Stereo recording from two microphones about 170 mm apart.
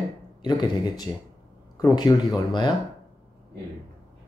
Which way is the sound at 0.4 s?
25° left (ahead or behind).